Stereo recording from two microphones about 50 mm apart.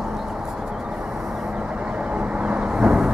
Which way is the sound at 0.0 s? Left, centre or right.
Centre.